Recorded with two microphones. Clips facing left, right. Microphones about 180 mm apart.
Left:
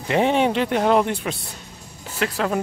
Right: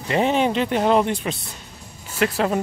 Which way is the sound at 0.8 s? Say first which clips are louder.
Even; 15° right (ahead or behind).